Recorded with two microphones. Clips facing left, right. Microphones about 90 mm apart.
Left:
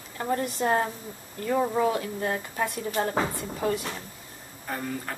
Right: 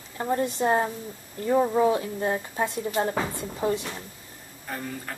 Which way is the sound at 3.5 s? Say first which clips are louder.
Right 2 dB; 20° right (ahead or behind).